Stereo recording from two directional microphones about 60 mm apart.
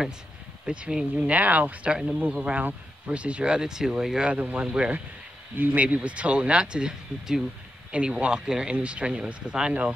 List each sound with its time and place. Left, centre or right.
0.7 s speech: centre
4.3 s speech: right